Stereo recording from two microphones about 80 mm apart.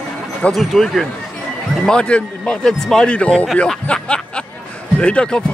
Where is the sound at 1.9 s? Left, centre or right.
Centre.